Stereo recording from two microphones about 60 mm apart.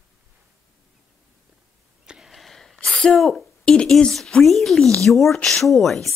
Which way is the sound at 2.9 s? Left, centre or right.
Centre.